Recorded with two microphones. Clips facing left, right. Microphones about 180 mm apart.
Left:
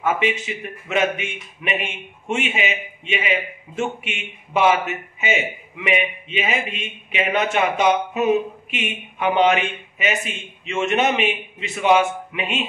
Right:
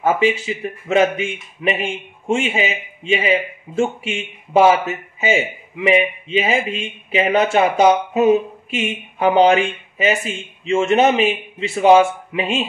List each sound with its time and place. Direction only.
0.0 s a man's voice: 35° right (ahead or behind)